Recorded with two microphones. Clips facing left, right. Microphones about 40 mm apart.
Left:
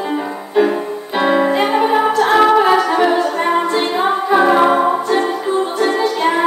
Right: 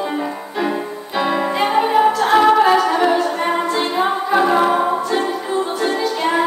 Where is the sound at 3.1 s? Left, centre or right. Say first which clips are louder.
Left 2 dB; left.